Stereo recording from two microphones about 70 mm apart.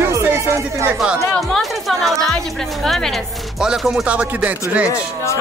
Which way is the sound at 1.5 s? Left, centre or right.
Centre.